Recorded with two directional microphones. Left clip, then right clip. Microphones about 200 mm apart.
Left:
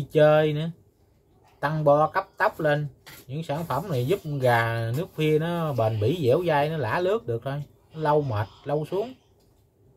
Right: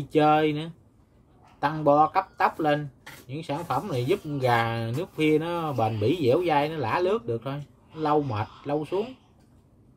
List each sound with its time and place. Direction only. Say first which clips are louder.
0.1 s speech: left 2 dB; 15° right (ahead or behind)